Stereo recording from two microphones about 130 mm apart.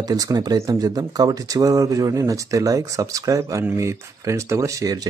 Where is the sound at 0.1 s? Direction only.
30° right (ahead or behind).